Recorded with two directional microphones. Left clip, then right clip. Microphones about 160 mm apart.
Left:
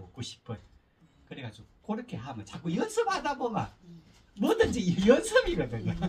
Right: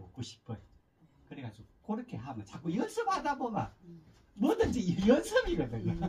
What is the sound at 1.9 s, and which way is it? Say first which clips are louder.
Speech: left 3 dB; 10° right (ahead or behind).